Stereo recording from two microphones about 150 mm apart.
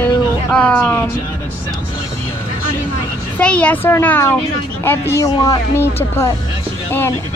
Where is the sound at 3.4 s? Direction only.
10° left (ahead or behind).